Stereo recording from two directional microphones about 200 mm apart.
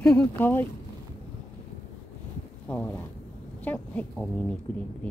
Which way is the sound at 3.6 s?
5° left (ahead or behind).